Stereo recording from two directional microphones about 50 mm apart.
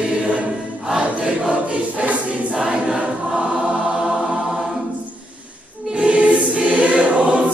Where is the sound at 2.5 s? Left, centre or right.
Centre.